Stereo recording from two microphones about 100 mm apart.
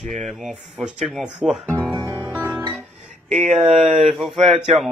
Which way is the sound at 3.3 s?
Centre (ahead or behind).